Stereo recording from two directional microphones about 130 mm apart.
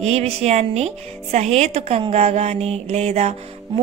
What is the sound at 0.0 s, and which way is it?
Speech, 55° right (ahead or behind).